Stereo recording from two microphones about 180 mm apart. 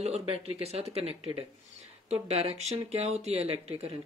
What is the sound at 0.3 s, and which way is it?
Speech, 35° right (ahead or behind).